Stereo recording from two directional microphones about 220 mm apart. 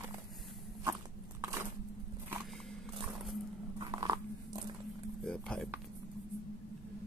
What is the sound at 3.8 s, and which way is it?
Biting, 20° right (ahead or behind).